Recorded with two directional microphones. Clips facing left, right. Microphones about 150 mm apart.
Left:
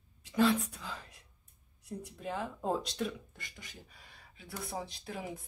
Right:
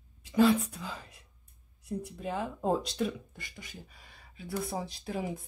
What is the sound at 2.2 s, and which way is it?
Speech, 10° right (ahead or behind).